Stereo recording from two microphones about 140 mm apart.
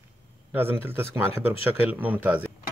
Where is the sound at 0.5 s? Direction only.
15° right (ahead or behind).